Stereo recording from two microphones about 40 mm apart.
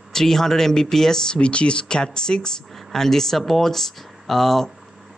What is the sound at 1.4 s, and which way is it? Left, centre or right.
Speech, left.